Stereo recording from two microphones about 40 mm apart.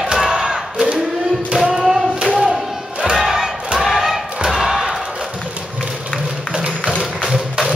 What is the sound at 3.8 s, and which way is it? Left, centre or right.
Thump, centre.